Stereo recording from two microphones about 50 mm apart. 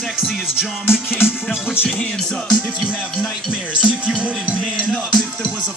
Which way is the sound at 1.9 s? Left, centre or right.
Centre.